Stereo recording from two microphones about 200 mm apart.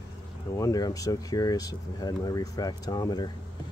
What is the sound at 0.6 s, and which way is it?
Speech, 15° left (ahead or behind).